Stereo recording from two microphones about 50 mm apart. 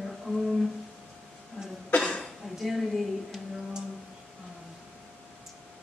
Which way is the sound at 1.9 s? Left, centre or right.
Centre.